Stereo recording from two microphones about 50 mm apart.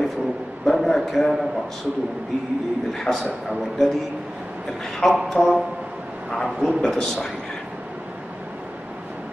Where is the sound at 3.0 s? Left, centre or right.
Centre.